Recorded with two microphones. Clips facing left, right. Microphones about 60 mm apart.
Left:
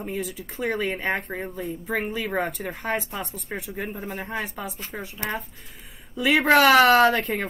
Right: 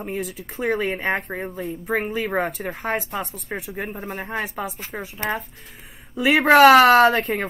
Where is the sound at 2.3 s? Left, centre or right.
Centre.